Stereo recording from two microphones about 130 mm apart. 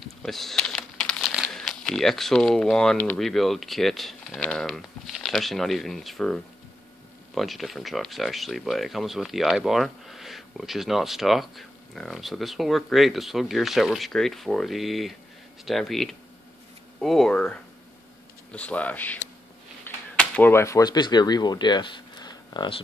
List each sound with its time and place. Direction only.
0.2 s typing: centre (ahead or behind)
1.3 s speech: centre (ahead or behind)
19.9 s a sound: 15° left (ahead or behind)
20.2 s speech: 15° left (ahead or behind); by 22.8 s 35° left (ahead or behind)